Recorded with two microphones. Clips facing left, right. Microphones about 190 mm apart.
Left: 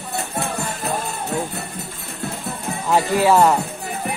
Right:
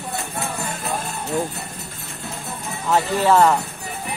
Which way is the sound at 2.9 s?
10° left (ahead or behind).